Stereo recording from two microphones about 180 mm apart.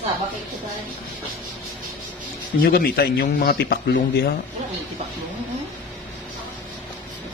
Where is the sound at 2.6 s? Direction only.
60° left (ahead or behind).